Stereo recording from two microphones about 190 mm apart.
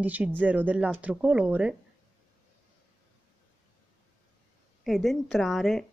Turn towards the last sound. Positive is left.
turn(degrees=0)  # may be behind; listen again after turning